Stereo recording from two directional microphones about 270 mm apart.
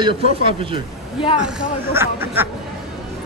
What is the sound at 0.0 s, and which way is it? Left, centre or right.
Speech, centre.